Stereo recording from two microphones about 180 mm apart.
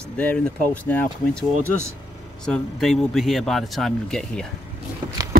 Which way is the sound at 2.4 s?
Centre (ahead or behind).